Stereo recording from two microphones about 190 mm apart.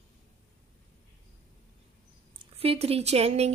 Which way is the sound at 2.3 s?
30° right (ahead or behind).